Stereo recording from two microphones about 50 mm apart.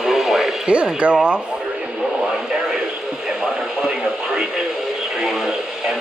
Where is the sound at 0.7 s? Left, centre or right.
Right.